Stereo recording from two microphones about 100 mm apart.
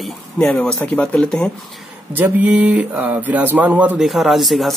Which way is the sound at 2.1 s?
15° right (ahead or behind).